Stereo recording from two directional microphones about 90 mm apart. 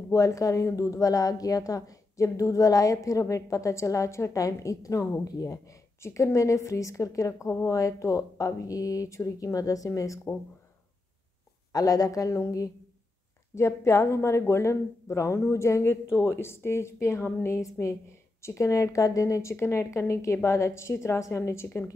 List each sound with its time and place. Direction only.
0.1 s a woman's voice: 35° left (ahead or behind)
11.7 s a woman's voice: 40° left (ahead or behind)